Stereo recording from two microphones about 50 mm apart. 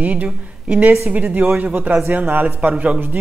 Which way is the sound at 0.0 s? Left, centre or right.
Right.